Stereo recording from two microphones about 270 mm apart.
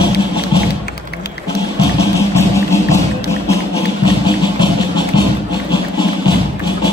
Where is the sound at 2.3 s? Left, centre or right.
Centre.